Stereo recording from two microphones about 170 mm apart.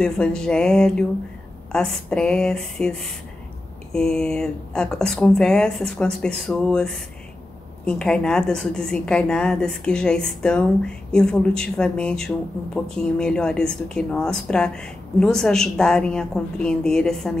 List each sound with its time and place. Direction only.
0.0 s a woman's voice: 5° left (ahead or behind)